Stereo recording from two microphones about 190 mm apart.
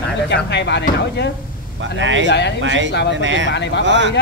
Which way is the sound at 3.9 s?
70° right (ahead or behind).